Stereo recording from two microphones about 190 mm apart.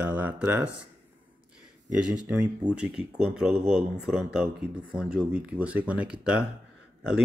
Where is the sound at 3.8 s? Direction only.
Centre (ahead or behind).